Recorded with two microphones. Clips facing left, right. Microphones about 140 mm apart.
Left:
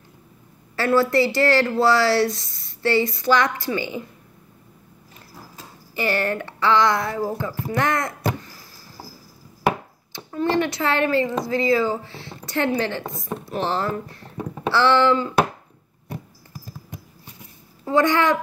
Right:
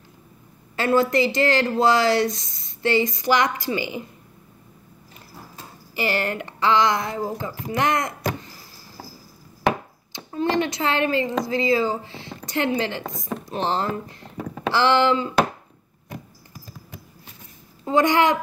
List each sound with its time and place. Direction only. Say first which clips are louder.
0.7 s speech: left 1 dB; 20° right (ahead or behind)
5.9 s speech: left 1 dB; 15° right (ahead or behind)
10.1 s speech: left 1 dB; 20° right (ahead or behind)
17.8 s speech: even; 15° right (ahead or behind)